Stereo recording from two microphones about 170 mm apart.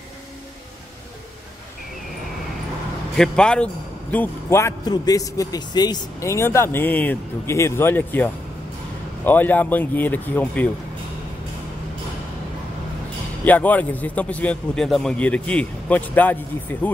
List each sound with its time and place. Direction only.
3.2 s a man's voice: 5° left (ahead or behind)
13.4 s a man's voice: 10° left (ahead or behind)